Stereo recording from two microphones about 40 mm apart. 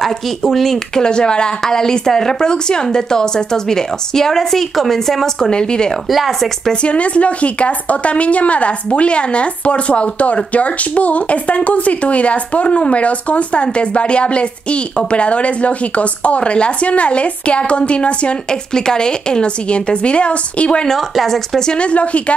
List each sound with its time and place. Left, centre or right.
0.0 s speech: centre
0.9 s a woman's voice: left
6.0 s speech: centre
6.7 s a woman's voice: left
18.9 s a woman's voice: centre